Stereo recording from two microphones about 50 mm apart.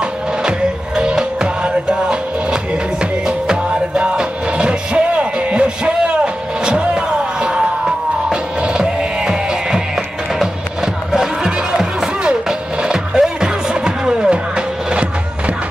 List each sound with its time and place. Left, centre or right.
0.0 s music: centre
11.1 s music: centre